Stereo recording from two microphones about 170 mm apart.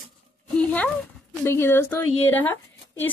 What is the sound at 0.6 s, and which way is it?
Speech, 5° left (ahead or behind).